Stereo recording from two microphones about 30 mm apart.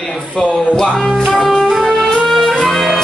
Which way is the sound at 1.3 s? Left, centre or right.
Centre.